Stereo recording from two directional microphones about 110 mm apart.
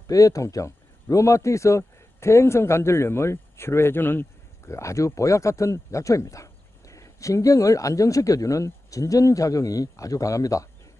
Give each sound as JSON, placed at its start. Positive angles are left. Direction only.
{"t": 0.0, "sound": "speech", "side_deg": 30}